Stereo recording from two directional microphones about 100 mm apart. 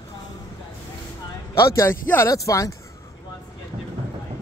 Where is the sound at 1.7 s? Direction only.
25° left (ahead or behind).